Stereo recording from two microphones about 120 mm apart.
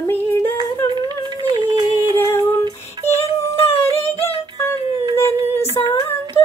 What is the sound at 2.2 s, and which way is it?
Female singing, 25° left (ahead or behind).